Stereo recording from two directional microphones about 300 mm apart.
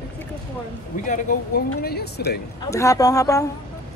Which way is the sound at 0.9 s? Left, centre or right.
Left.